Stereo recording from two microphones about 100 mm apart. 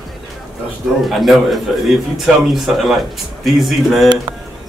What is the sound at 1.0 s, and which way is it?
A man's voice, centre (ahead or behind).